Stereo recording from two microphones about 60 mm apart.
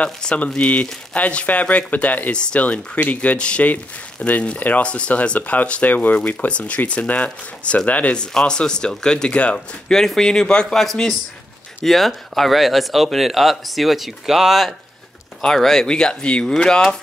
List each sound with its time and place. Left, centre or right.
0.0 s speech: centre
9.9 s speech: centre
11.8 s speech: centre